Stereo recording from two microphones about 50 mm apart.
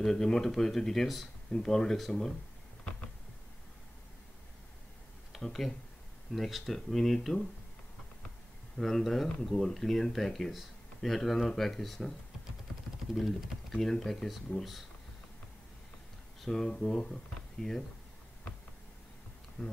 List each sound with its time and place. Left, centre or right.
0.0 s speech: centre
5.3 s speech: centre
8.7 s speech: centre
13.1 s speech: centre
16.3 s speech: centre
19.6 s speech: left